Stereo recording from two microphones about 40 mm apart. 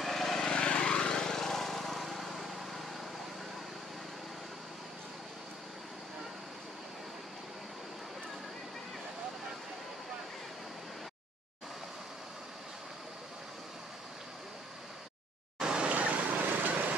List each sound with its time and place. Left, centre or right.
0.0 s vehicle: centre
0.5 s vehicle: left; by 2.8 s centre
15.6 s vehicle: right
15.9 s vehicle: right